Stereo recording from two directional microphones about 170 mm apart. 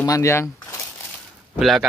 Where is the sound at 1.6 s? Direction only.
Centre (ahead or behind).